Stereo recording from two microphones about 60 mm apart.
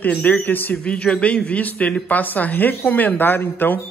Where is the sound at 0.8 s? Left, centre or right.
Centre.